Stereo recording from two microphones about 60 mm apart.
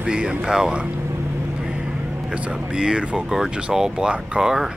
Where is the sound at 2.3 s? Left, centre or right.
Centre.